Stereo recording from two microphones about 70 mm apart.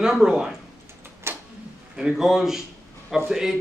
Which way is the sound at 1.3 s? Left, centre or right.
Right.